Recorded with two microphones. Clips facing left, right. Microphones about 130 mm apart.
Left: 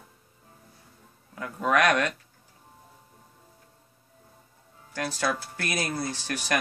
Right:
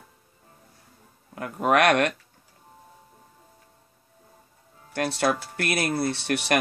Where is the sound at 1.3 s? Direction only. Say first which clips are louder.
Right 3 dB; 60° right (ahead or behind).